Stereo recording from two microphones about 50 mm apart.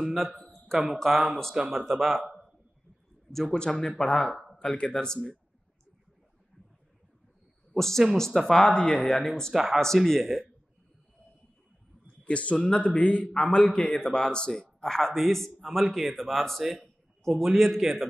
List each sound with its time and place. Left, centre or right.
0.0 s a sound: centre
0.9 s speech: centre
3.3 s a man's voice: centre
7.7 s speech: centre
8.5 s speech: centre
9.5 s speech: centre
12.3 s a man's voice: left; by 18.0 s centre